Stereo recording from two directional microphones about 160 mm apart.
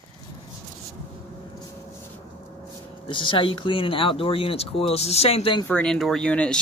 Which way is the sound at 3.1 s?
30° left (ahead or behind).